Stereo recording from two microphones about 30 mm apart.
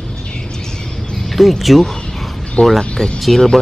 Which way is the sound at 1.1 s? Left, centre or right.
Centre.